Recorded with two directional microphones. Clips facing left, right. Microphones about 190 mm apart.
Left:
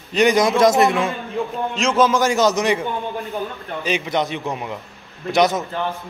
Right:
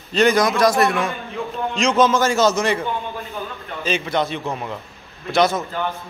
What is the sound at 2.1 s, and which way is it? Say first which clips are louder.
Speech: even; 15° left (ahead or behind).